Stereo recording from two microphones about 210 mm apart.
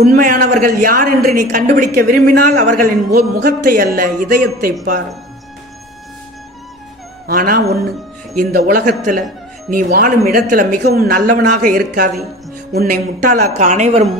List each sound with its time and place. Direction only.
0.0 s a woman's voice: 40° right (ahead or behind)
7.2 s a woman's voice: 45° right (ahead or behind)